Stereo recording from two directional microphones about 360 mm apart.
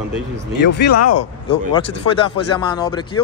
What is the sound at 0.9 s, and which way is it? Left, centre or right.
Speech, left.